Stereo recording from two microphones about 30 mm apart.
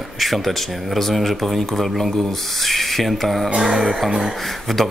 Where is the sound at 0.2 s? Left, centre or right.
Centre.